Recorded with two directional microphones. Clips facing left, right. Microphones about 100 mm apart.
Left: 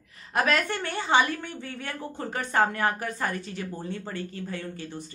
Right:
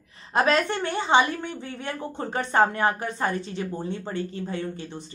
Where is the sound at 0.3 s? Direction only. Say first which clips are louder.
Right 3 dB; 25° right (ahead or behind).